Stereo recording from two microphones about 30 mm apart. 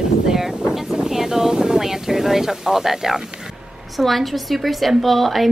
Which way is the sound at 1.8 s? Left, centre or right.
Centre.